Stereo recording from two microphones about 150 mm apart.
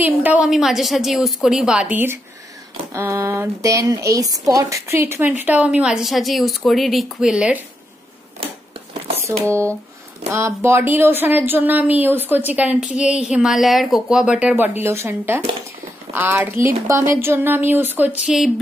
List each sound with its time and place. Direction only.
0.0 s a woman's voice: 10° right (ahead or behind)
9.5 s speech: 20° right (ahead or behind)